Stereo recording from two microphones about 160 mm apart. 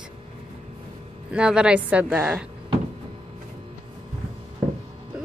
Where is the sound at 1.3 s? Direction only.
5° right (ahead or behind).